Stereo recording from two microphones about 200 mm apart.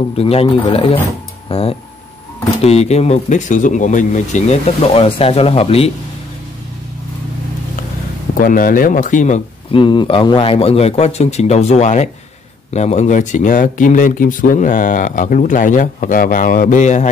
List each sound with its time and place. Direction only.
0.2 s speech: 30° left (ahead or behind)
8.4 s speech: 45° left (ahead or behind)
9.8 s speech: 25° left (ahead or behind)